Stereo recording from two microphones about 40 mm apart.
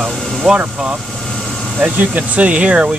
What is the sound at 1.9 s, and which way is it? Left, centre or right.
Speech, right.